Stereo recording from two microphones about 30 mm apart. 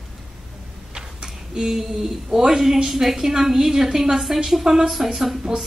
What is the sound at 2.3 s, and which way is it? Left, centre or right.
A woman's voice, centre.